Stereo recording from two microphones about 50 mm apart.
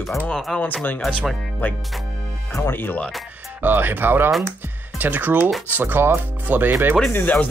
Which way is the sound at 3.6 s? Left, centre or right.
Right.